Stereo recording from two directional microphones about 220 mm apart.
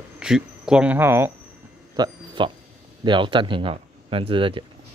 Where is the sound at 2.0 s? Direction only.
20° right (ahead or behind).